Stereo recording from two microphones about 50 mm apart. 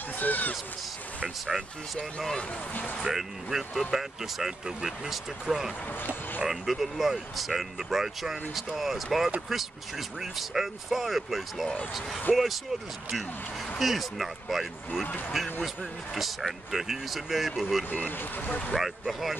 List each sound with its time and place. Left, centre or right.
0.2 s speech: left
1.5 s speech: centre
2.7 s speech: left
3.0 s speech: centre
13.7 s speech: centre
15.0 s speech: left
16.2 s speech: centre
17.8 s speech: left
18.8 s speech: centre